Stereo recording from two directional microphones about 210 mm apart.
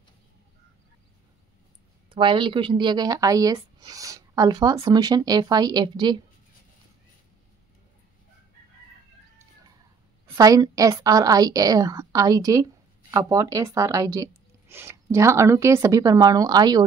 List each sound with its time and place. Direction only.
2.0 s speech: 25° right (ahead or behind)
10.2 s speech: 15° right (ahead or behind)